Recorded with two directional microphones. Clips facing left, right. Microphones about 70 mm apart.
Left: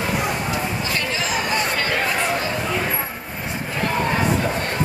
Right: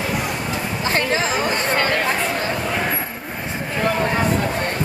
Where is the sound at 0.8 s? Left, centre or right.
Right.